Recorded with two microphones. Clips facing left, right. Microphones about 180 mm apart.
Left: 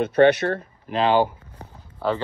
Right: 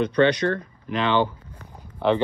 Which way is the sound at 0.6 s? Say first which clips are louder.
Left 3 dB; 30° left (ahead or behind).